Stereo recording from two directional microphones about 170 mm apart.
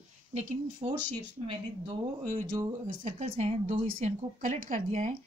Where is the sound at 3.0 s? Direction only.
45° right (ahead or behind).